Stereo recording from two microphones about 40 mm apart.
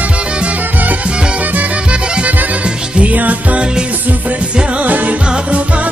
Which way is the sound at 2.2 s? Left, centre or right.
Right.